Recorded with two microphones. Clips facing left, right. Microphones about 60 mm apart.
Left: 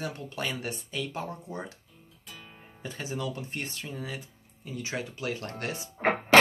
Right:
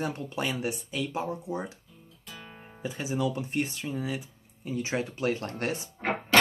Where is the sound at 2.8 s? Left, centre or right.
Centre.